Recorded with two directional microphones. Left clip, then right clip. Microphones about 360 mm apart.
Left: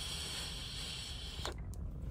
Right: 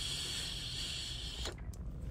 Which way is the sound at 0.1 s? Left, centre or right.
Centre.